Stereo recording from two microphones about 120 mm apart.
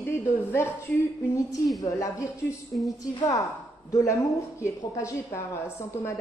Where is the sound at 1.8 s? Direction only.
25° left (ahead or behind).